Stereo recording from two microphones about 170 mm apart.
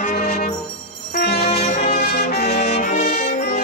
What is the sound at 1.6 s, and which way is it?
Music, 40° left (ahead or behind).